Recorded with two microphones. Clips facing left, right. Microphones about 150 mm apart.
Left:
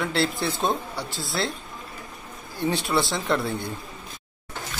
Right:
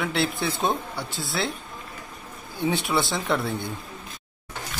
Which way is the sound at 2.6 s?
Centre (ahead or behind).